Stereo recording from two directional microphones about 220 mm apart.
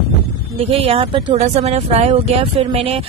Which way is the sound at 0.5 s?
25° right (ahead or behind).